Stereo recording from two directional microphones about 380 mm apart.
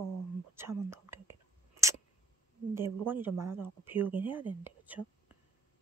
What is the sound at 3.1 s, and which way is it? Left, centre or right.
Speech, centre.